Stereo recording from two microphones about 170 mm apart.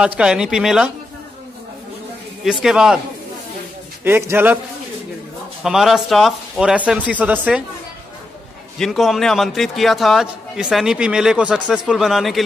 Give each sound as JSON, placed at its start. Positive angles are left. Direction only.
{"t": 0.2, "sound": "a man's voice", "side_deg": -5}
{"t": 2.4, "sound": "a man's voice", "side_deg": -5}
{"t": 4.0, "sound": "a man's voice", "side_deg": -15}
{"t": 5.6, "sound": "a man's voice", "side_deg": 0}
{"t": 8.7, "sound": "a man's voice", "side_deg": 0}